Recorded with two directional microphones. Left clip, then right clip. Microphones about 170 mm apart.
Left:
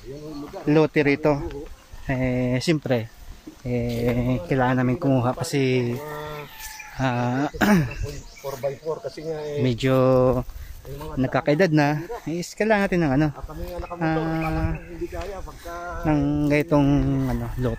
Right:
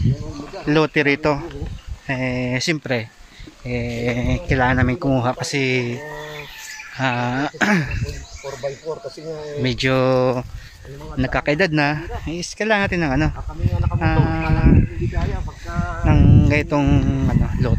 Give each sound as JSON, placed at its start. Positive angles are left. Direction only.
{"t": 0.7, "sound": "speech", "side_deg": 0}
{"t": 7.0, "sound": "speech", "side_deg": 5}
{"t": 9.6, "sound": "speech", "side_deg": 5}
{"t": 15.7, "sound": "sheep", "side_deg": 75}
{"t": 16.1, "sound": "speech", "side_deg": 5}